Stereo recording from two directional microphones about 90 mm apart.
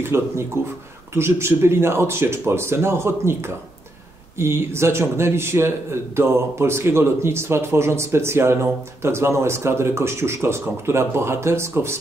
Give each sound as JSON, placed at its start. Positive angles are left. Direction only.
{"t": 0.0, "sound": "a man's voice", "side_deg": -30}